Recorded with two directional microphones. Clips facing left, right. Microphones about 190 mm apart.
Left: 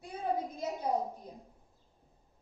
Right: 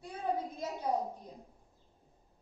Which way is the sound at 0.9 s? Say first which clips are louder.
Left 1 dB; 15° left (ahead or behind).